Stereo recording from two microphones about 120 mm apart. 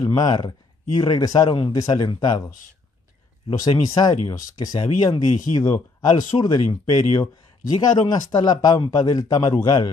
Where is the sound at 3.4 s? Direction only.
35° left (ahead or behind).